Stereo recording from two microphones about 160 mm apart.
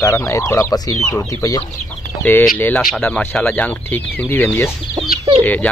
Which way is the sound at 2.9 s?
10° left (ahead or behind).